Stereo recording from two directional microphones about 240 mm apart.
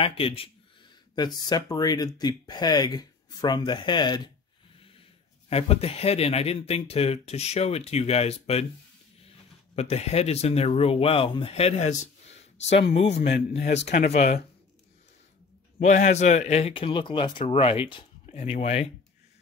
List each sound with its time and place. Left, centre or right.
0.0 s speech: left
1.5 s speech: centre
5.5 s speech: left
9.8 s speech: left
15.8 s speech: left